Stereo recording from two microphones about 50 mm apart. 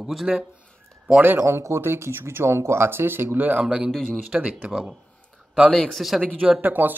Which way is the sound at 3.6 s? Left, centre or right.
Centre.